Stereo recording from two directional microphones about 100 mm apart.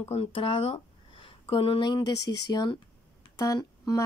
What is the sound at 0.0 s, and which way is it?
Speech, 75° left (ahead or behind).